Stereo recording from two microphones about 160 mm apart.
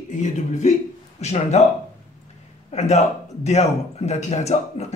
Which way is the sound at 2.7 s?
45° left (ahead or behind).